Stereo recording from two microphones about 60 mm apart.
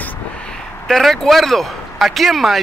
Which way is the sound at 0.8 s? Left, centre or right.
Centre.